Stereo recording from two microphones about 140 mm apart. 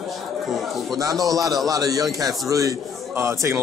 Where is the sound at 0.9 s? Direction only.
25° right (ahead or behind).